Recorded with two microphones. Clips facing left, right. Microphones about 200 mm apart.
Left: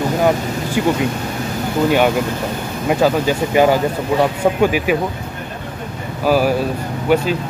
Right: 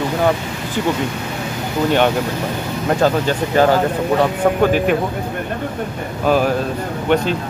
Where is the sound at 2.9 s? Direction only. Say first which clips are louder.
Left 1 dB; 10° left (ahead or behind).